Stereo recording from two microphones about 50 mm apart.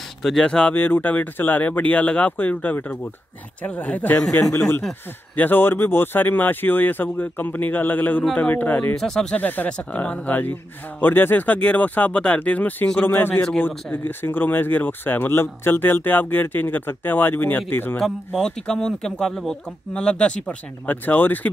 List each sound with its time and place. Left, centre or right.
0.2 s speech: centre
0.7 s speech: left
5.3 s speech: left
9.0 s speech: centre
9.4 s speech: left
13.0 s speech: left
18.4 s speech: centre
20.0 s speech: centre
20.8 s speech: left